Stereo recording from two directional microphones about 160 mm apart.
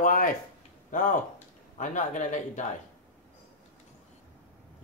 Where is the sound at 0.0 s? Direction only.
60° left (ahead or behind).